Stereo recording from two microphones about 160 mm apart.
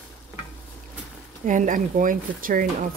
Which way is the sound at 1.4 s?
55° right (ahead or behind).